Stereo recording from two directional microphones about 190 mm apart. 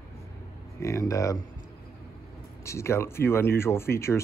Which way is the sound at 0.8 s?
15° left (ahead or behind).